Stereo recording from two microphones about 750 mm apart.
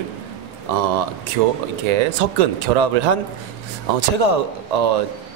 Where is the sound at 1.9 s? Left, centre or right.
Right.